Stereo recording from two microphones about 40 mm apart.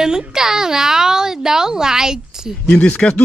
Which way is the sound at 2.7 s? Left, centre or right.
Left.